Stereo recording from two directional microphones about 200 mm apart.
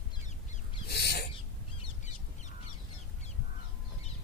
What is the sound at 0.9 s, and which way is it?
Owl, 55° left (ahead or behind).